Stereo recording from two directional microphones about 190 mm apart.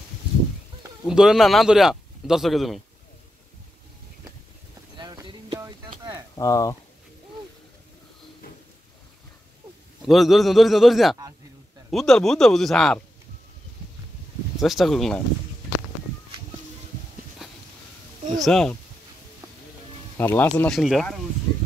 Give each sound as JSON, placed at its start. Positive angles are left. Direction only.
{"t": 1.0, "sound": "speech", "side_deg": -5}
{"t": 4.9, "sound": "a sound", "side_deg": -20}
{"t": 6.3, "sound": "speech", "side_deg": 20}
{"t": 10.0, "sound": "speech", "side_deg": 0}
{"t": 14.6, "sound": "speech", "side_deg": 0}
{"t": 17.4, "sound": "a sound", "side_deg": 0}
{"t": 18.4, "sound": "speech", "side_deg": 5}
{"t": 20.2, "sound": "speech", "side_deg": 10}